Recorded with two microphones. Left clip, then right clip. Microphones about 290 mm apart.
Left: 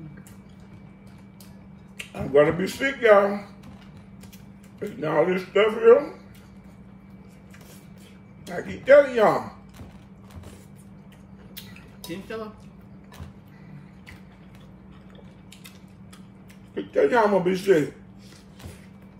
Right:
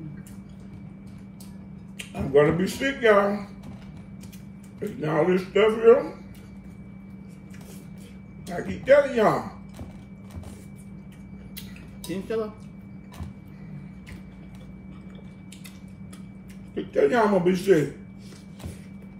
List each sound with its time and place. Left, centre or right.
2.0 s speech: centre
4.7 s speech: centre
8.5 s speech: centre
12.1 s speech: centre
16.7 s speech: centre